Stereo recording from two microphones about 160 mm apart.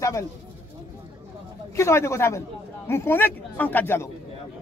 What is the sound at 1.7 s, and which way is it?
Speech, 15° left (ahead or behind).